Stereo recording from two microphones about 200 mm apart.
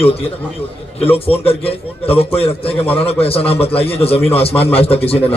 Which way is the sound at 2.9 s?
30° left (ahead or behind).